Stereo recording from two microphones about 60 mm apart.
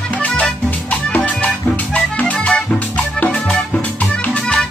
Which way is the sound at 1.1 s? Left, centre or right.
Left.